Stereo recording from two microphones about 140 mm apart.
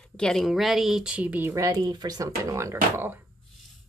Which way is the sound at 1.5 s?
25° right (ahead or behind).